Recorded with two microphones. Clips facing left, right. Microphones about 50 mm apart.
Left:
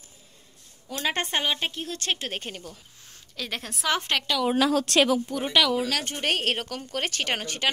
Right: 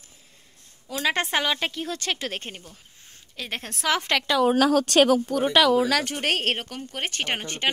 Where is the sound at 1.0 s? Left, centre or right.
Right.